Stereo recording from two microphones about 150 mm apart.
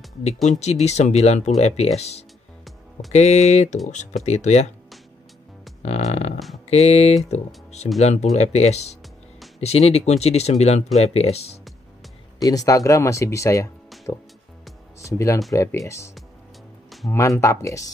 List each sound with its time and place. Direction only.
0.5 s speech: 50° left (ahead or behind)
5.8 s music: 50° left (ahead or behind)
6.7 s speech: 45° left (ahead or behind)
12.4 s speech: 25° left (ahead or behind)
16.9 s a sound: centre (ahead or behind)
17.4 s speech: 20° left (ahead or behind)